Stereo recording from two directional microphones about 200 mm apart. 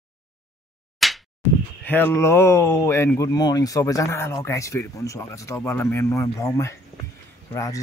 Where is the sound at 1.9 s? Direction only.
10° left (ahead or behind).